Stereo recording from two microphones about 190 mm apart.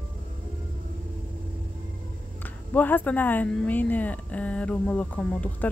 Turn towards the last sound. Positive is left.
turn(degrees=10)  # may be behind; listen again after turning